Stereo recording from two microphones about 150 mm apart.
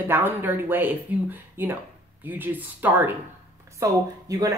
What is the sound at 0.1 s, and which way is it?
Speech, 15° right (ahead or behind).